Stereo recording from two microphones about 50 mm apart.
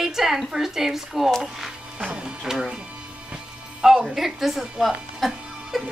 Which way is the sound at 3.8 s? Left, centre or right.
Centre.